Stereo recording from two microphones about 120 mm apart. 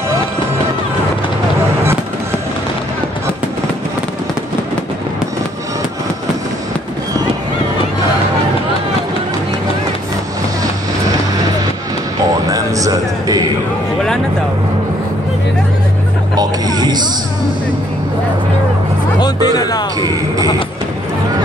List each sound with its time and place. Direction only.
12.4 s music: 30° right (ahead or behind)
16.3 s vehicle: 35° right (ahead or behind)
19.1 s music: 35° left (ahead or behind)